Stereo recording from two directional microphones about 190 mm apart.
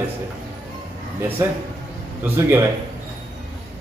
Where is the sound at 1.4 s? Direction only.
10° right (ahead or behind).